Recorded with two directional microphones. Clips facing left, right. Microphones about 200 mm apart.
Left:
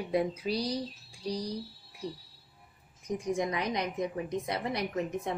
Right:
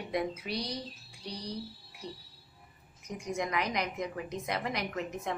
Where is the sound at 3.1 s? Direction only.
30° left (ahead or behind).